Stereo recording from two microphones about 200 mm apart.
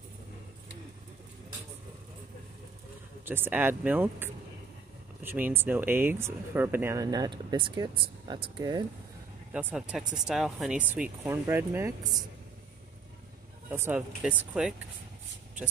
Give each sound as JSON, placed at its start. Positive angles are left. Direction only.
{"t": 3.3, "sound": "speech", "side_deg": -10}
{"t": 9.5, "sound": "speech", "side_deg": -5}
{"t": 13.7, "sound": "speech", "side_deg": -10}